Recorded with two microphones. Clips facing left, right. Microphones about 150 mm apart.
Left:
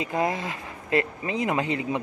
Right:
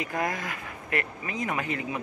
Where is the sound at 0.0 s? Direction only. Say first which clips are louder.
Left 4 dB; 25° left (ahead or behind).